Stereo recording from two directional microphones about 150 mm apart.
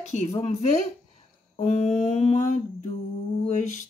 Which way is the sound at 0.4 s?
45° left (ahead or behind).